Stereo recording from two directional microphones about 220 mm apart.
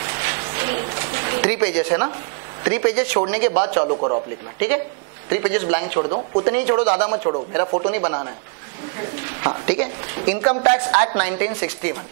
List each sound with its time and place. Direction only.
0.2 s a sound: 15° right (ahead or behind)
1.3 s a woman's voice: 15° right (ahead or behind)
3.8 s a man's voice: 25° right (ahead or behind)
4.6 s a man's voice: 10° right (ahead or behind)
7.5 s a man's voice: 20° right (ahead or behind)
7.8 s a man's voice: 10° right (ahead or behind)